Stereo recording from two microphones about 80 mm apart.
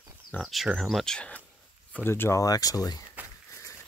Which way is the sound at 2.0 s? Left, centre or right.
Left.